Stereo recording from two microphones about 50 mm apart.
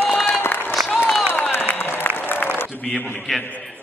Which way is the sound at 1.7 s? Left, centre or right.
Left.